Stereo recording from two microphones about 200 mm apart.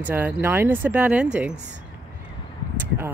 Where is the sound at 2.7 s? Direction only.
10° right (ahead or behind).